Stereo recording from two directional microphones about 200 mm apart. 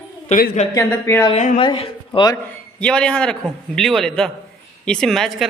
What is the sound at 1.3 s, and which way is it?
A woman's voice, 35° left (ahead or behind).